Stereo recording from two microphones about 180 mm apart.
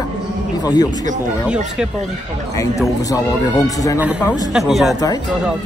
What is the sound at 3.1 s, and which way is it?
Speech, 20° left (ahead or behind).